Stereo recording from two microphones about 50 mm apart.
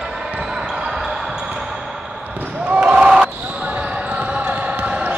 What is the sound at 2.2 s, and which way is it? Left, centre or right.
Basketball bounce, right.